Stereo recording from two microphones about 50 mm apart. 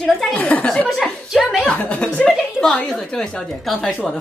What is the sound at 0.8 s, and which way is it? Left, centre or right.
Speech, centre.